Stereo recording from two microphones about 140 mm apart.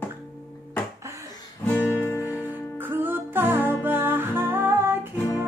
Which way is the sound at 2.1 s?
15° right (ahead or behind).